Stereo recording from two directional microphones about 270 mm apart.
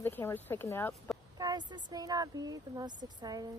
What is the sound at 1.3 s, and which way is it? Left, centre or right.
Speech, centre.